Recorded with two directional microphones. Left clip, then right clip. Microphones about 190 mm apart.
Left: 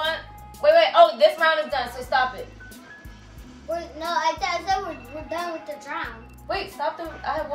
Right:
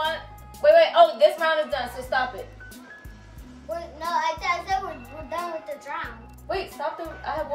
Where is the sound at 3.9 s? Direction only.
15° left (ahead or behind).